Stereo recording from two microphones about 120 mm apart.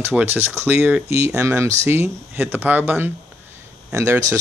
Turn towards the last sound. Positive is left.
turn(degrees=-25)  # may be behind; listen again after turning